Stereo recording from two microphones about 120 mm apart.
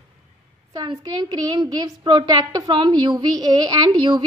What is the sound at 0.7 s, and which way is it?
A woman's voice, 35° right (ahead or behind).